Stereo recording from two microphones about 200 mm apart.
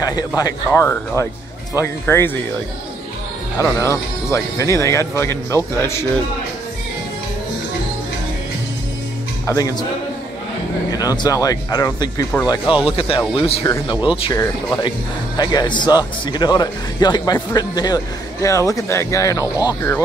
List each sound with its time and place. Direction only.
0.0 s speech: 20° left (ahead or behind)
3.8 s speech: 15° left (ahead or behind)
9.5 s speech: 15° left (ahead or behind)
10.9 s speech: 20° left (ahead or behind)